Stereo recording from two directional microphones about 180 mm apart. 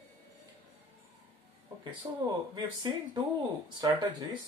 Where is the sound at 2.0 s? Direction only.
25° right (ahead or behind).